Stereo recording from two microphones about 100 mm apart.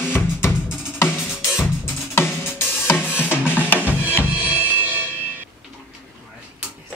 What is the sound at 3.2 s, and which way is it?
Music, 20° left (ahead or behind).